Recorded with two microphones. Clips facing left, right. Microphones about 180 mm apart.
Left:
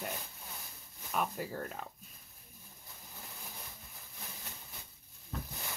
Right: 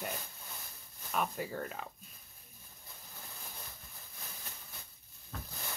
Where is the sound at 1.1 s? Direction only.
Centre (ahead or behind).